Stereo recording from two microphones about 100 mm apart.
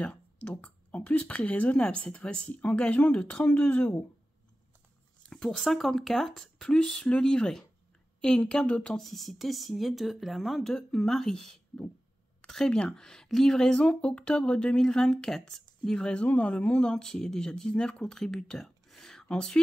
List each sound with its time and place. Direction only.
0.0 s speech: 10° left (ahead or behind)
5.2 s a woman's voice: 5° left (ahead or behind)